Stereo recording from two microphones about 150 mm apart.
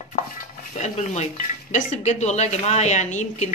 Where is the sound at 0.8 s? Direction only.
50° left (ahead or behind).